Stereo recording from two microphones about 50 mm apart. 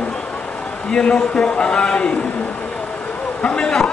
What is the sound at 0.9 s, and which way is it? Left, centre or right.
A man's voice, centre.